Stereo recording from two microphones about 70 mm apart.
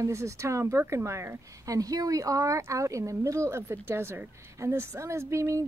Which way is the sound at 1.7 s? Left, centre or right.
Right.